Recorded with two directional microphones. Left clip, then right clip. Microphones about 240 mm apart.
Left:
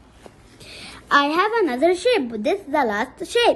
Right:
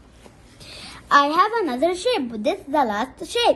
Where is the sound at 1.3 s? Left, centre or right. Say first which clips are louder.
Even; left.